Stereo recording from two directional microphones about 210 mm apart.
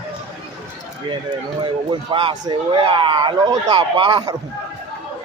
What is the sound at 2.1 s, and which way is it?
Speech, 25° right (ahead or behind).